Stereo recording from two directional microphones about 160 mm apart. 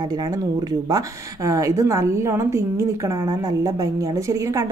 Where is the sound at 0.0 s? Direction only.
25° right (ahead or behind).